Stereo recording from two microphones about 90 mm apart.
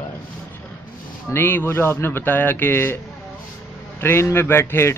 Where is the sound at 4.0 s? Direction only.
25° left (ahead or behind).